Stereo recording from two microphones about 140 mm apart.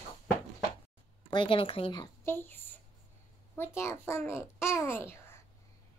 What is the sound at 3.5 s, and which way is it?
A child's voice, 15° left (ahead or behind).